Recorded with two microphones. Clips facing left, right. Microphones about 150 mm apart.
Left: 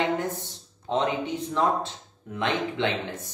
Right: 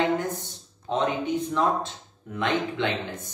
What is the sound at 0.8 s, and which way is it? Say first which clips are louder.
A man's voice: even; 25° left (ahead or behind).